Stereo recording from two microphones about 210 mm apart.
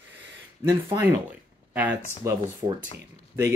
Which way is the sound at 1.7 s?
10° right (ahead or behind).